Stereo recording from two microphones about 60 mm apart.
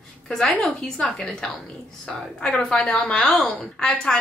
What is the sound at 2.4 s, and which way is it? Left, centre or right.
A woman's voice, centre.